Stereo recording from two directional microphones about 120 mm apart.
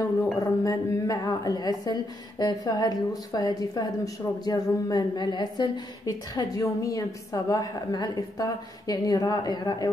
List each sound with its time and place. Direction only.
0.2 s speech: 30° left (ahead or behind)